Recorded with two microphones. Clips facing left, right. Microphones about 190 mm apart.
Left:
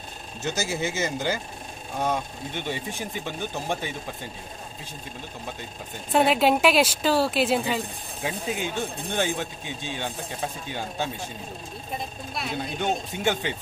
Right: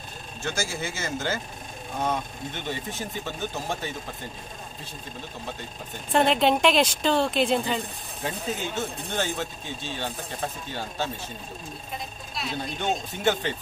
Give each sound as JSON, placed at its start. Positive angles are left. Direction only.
{"t": 0.4, "sound": "speech", "side_deg": 20}
{"t": 6.1, "sound": "speech", "side_deg": 5}
{"t": 13.2, "sound": "speech", "side_deg": 15}